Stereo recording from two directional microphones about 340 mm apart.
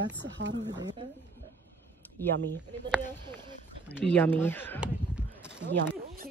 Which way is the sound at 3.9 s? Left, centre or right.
Centre.